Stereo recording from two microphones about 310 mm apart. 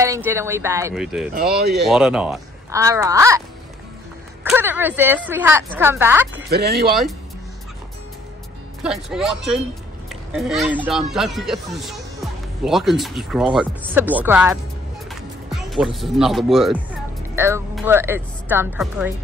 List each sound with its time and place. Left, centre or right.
0.0 s a woman's voice: centre
1.3 s speech: right
1.9 s a woman's voice: centre
4.5 s a woman's voice: centre
6.5 s speech: right
8.8 s speech: centre
15.0 s music: centre
17.4 s a woman's voice: centre